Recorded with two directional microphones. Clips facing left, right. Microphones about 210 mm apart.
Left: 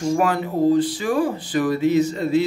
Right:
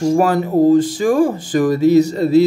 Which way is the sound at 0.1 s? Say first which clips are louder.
Right 4 dB; 40° right (ahead or behind).